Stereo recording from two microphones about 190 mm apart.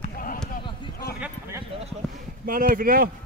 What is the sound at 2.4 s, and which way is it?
Speech, 50° right (ahead or behind).